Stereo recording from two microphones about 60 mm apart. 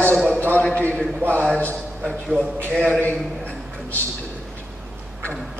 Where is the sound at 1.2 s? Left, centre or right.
Right.